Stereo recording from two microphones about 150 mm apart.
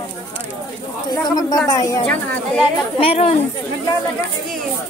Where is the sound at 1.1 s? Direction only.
25° left (ahead or behind).